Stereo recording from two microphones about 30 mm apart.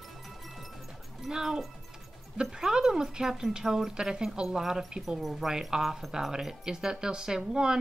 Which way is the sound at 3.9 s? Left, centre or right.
Right.